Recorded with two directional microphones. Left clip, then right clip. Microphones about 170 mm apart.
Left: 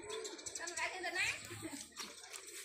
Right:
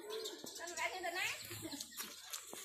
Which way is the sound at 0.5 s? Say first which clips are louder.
Left 1 dB; 20° right (ahead or behind).